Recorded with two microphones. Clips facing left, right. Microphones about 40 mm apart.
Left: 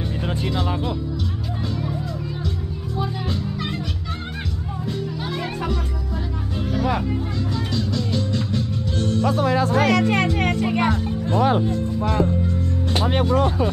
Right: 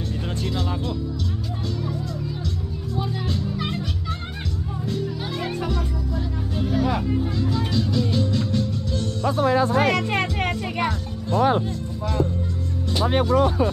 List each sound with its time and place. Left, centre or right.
0.3 s speech: centre
3.0 s music: centre
4.8 s music: centre
6.5 s speech: centre
8.9 s music: left
9.8 s speech: centre
10.5 s music: centre
10.9 s speech: left